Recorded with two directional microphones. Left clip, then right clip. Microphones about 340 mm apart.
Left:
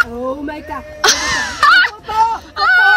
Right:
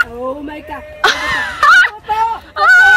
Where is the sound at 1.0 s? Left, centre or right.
Centre.